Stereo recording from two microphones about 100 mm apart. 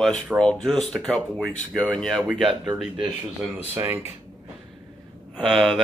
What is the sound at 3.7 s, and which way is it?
Speech, 20° right (ahead or behind).